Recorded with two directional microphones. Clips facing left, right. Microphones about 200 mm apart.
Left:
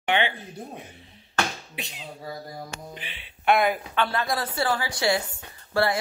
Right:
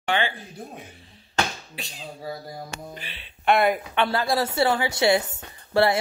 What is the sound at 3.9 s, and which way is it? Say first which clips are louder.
Speech: right 3 dB; 30° right (ahead or behind).